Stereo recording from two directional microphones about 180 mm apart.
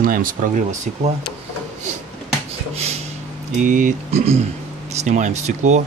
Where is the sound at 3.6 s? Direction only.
45° right (ahead or behind).